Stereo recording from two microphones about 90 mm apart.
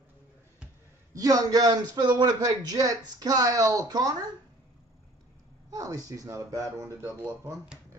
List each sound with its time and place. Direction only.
1.1 s a man's voice: 40° right (ahead or behind)
5.7 s speech: 40° right (ahead or behind)
7.2 s speech: 20° right (ahead or behind)